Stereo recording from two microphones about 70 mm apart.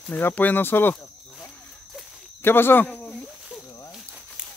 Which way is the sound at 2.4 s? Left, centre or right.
Left.